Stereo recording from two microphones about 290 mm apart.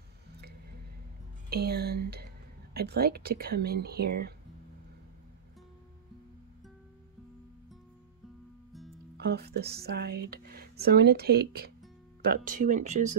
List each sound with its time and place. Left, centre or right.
1.5 s speech: right
9.1 s speech: right